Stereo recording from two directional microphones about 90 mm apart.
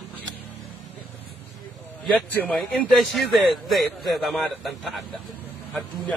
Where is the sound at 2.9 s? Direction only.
Centre (ahead or behind).